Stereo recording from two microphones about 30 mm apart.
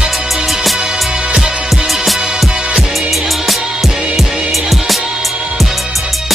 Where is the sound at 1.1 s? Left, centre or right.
Right.